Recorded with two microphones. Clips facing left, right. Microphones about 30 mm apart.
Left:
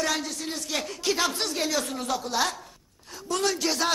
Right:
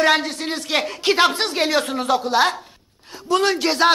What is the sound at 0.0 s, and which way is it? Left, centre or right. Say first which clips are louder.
A woman's voice: right 10 dB; right.